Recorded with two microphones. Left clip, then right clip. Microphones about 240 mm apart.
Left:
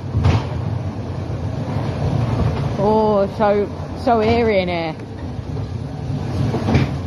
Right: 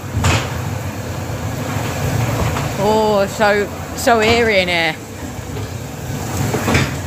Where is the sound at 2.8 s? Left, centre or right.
Centre.